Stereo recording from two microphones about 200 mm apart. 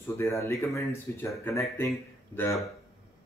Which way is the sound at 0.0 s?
15° left (ahead or behind).